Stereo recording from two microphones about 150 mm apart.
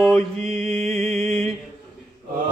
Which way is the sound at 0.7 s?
35° right (ahead or behind).